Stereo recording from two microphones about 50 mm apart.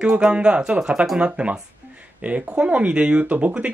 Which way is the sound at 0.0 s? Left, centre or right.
Centre.